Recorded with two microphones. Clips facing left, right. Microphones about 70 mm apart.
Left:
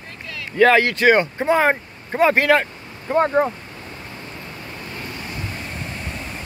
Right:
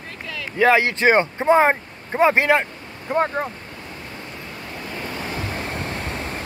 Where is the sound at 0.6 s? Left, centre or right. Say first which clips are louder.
Left 2 dB; centre.